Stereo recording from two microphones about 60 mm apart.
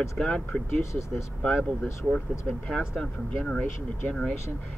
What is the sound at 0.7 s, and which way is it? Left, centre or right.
Speech, left.